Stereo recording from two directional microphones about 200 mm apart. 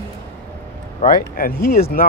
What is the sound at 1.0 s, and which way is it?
Speech, 45° left (ahead or behind).